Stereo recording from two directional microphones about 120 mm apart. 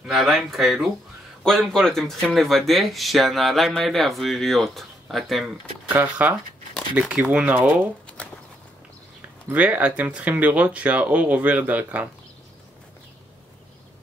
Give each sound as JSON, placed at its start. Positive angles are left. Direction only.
{"t": 0.0, "sound": "speech", "side_deg": 0}
{"t": 5.9, "sound": "speech", "side_deg": -15}
{"t": 9.5, "sound": "speech", "side_deg": -10}